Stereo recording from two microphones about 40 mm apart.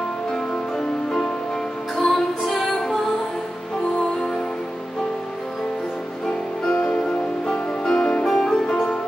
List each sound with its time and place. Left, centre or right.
0.3 s music: centre
6.7 s music: left